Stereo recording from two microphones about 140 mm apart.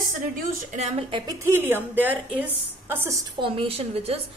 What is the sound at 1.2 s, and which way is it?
A woman's voice, 20° right (ahead or behind).